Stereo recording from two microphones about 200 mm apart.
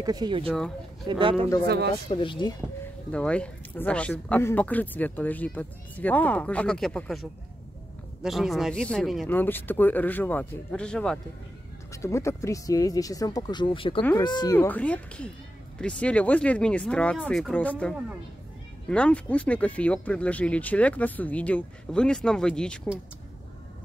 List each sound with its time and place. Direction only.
0.0 s speech: 20° right (ahead or behind)
0.5 s speech: 5° left (ahead or behind)
1.0 s speech: 25° right (ahead or behind)
2.0 s speech: 25° left (ahead or behind)
3.1 s speech: 5° left (ahead or behind)
11.9 s speech: 15° left (ahead or behind)